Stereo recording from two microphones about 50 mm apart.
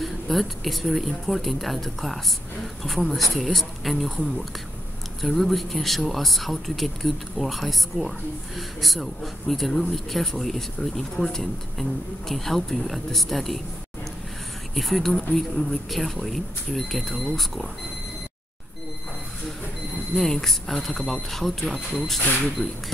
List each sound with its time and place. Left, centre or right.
0.0 s speech: centre
14.8 s speech: centre
20.2 s speech: centre